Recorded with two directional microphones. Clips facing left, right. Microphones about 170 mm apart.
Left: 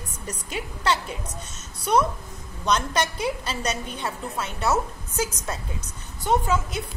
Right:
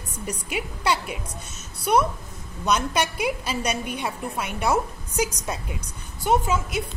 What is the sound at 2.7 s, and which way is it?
A woman's voice, 10° right (ahead or behind).